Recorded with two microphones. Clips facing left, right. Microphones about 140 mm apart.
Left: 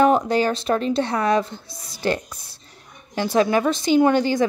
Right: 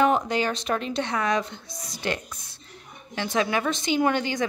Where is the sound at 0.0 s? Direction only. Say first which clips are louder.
Left 5 dB; 35° left (ahead or behind).